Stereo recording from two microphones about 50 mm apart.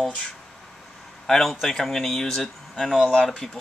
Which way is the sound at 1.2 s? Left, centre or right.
Centre.